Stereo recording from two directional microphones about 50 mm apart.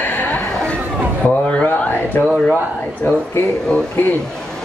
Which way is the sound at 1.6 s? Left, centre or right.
Left.